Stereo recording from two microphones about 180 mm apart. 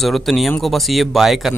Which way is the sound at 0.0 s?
Centre (ahead or behind).